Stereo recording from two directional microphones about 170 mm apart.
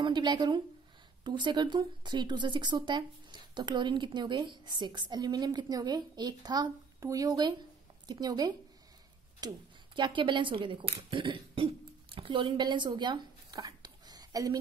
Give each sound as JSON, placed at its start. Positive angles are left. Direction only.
{"t": 0.0, "sound": "speech", "side_deg": -25}